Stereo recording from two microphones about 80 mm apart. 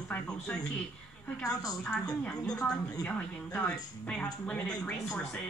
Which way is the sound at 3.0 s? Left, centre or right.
Centre.